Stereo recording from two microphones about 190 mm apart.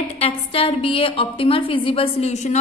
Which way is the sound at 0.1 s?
30° left (ahead or behind).